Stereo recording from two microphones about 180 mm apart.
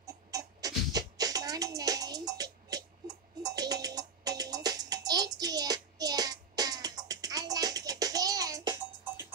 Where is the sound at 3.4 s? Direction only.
20° right (ahead or behind).